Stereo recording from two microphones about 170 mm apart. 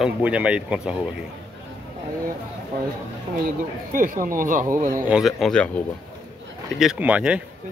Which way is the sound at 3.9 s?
55° right (ahead or behind).